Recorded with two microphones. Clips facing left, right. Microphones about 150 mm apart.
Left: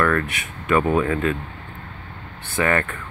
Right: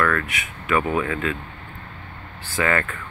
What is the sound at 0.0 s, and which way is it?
Speech, 25° left (ahead or behind).